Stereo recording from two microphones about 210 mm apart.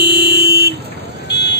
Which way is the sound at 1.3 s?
55° left (ahead or behind).